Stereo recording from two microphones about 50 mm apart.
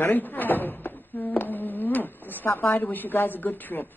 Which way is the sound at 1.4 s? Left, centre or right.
Left.